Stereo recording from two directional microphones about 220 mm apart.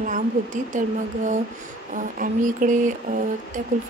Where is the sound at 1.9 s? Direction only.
35° right (ahead or behind).